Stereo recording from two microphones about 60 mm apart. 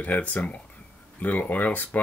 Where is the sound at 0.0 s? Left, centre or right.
Left.